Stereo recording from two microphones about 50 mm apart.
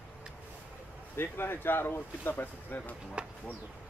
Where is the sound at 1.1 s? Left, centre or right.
Left.